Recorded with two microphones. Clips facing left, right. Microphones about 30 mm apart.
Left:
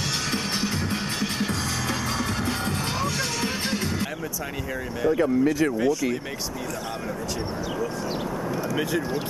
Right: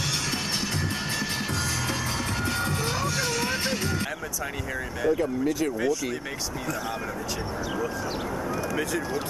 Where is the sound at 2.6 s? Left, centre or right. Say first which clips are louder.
Even; left.